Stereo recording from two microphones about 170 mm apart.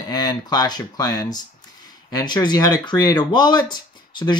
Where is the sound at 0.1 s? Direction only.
20° left (ahead or behind).